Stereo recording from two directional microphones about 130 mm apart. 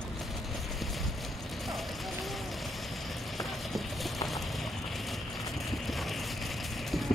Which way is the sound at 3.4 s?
Centre (ahead or behind).